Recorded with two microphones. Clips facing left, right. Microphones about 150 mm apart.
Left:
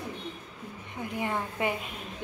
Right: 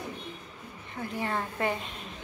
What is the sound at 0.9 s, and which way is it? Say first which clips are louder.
A woman's voice: even; 15° left (ahead or behind).